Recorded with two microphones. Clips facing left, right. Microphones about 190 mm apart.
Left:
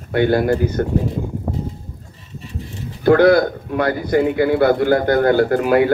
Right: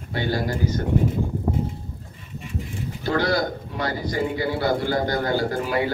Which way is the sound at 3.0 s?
55° left (ahead or behind).